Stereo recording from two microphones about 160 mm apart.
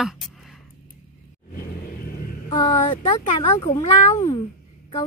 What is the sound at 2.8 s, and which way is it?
Speech, 30° left (ahead or behind).